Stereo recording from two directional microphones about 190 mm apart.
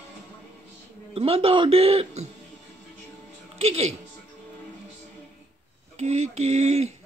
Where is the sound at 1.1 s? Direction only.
30° right (ahead or behind).